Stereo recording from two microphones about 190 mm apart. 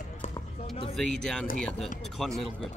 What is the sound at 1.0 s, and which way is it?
Speech, 5° left (ahead or behind).